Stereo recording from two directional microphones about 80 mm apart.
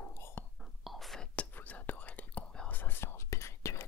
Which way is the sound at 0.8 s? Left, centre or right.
Centre.